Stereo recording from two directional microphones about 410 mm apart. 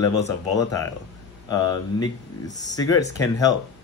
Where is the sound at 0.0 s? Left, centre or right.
Centre.